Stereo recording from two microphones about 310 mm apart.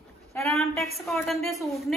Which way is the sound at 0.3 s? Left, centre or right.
Centre.